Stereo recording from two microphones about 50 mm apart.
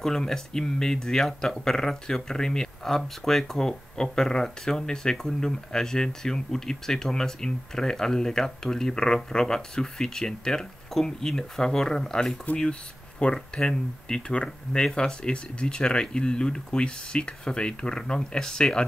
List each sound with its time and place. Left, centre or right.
0.0 s speech: centre